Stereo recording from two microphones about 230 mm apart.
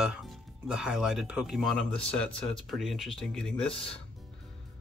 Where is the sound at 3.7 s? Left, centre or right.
Left.